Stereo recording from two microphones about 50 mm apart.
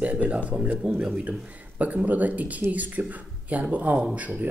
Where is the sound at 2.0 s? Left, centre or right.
Right.